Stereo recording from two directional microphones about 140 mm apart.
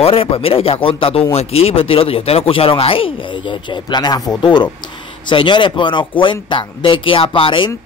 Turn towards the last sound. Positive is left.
turn(degrees=35)  # may be behind; listen again after turning